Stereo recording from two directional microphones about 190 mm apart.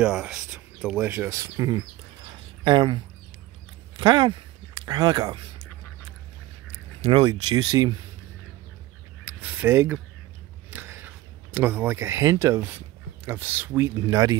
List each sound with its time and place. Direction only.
0.0 s speech: 5° right (ahead or behind); by 3.0 s 25° right (ahead or behind)
4.0 s speech: 25° right (ahead or behind)
7.0 s speech: 25° right (ahead or behind)
9.2 s a sound: 10° right (ahead or behind)
10.7 s speech: 10° right (ahead or behind)